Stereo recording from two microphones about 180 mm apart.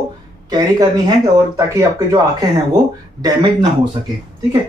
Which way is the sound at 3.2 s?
20° right (ahead or behind).